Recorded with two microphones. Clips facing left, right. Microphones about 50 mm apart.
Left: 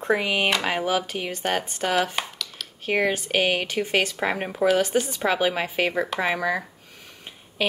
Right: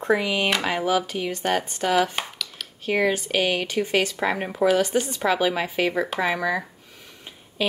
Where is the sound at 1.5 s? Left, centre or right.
Centre.